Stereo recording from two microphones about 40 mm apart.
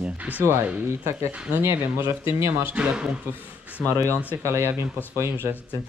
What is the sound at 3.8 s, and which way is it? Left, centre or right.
Speech, left.